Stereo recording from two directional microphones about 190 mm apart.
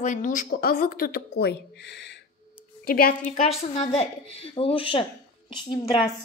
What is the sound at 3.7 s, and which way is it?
A woman's voice, 35° left (ahead or behind).